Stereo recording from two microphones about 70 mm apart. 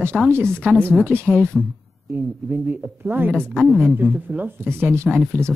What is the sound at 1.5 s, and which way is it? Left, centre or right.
Speech, centre.